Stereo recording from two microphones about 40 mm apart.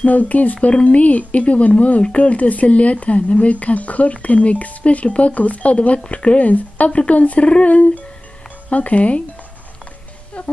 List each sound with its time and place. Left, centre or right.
0.0 s speech: left
10.4 s speech: left